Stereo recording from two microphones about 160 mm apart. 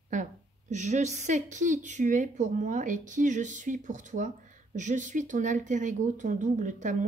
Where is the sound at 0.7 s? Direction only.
45° right (ahead or behind).